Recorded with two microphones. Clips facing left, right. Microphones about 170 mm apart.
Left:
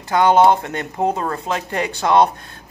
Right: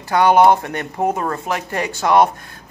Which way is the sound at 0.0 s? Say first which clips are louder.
Right 1 dB; 20° left (ahead or behind).